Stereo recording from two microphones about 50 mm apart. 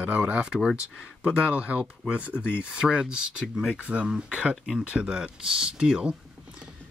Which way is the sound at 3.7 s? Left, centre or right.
Right.